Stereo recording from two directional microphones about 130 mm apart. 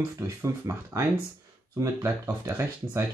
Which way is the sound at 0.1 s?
25° right (ahead or behind).